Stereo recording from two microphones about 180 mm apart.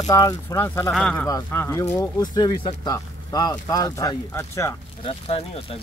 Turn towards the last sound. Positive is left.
turn(degrees=30)  # may be behind; listen again after turning